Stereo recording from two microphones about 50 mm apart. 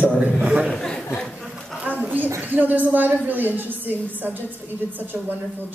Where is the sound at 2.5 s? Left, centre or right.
Right.